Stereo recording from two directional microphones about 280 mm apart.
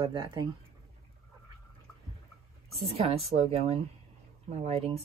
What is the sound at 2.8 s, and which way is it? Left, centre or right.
Speech, right.